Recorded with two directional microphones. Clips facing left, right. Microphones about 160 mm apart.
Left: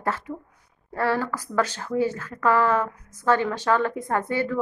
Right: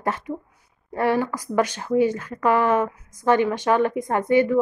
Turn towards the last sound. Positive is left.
turn(degrees=-15)  # may be behind; listen again after turning